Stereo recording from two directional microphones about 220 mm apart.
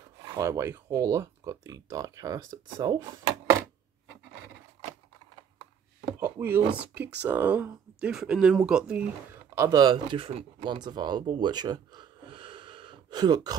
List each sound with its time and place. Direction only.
0.4 s speech: 10° right (ahead or behind)
6.1 s a sound: 10° right (ahead or behind)
6.8 s speech: 5° right (ahead or behind)
9.6 s speech: 15° right (ahead or behind)